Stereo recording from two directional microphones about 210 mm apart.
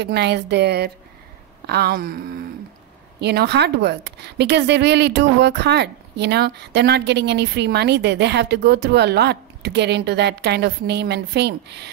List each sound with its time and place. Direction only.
0.0 s a woman's voice: 50° right (ahead or behind)